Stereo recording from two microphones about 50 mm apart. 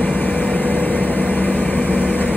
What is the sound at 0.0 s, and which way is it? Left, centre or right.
Vehicle, left.